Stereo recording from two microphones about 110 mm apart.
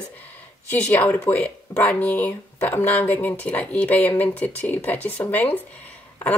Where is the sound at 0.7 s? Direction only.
15° left (ahead or behind).